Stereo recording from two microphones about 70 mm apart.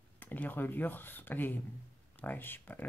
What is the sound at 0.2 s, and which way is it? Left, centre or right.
Speech, left.